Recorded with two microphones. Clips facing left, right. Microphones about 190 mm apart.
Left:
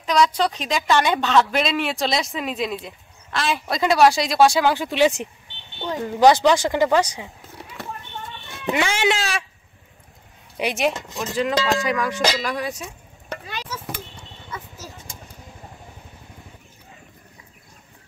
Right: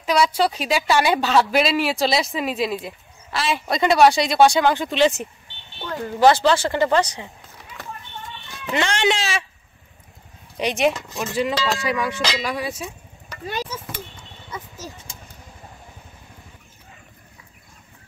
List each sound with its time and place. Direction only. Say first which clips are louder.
0.0 s a woman's voice: even; 5° right (ahead or behind); by 7.2 s 10° left (ahead or behind)
8.7 s a woman's voice: right 1 dB; 5° left (ahead or behind)
10.6 s a woman's voice: right 2 dB; centre (ahead or behind)